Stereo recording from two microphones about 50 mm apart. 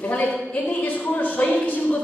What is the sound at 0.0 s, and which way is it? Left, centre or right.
Speech, left.